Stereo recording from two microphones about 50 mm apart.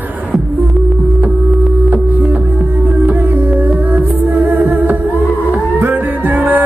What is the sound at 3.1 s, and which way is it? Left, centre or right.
Music, right.